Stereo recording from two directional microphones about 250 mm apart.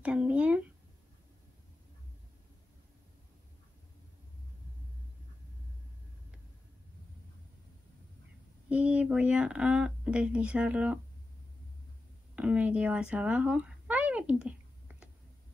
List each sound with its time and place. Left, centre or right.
0.0 s a sound: centre
8.6 s speech: centre
12.4 s speech: centre